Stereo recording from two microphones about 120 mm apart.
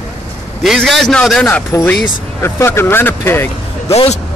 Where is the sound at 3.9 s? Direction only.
60° left (ahead or behind).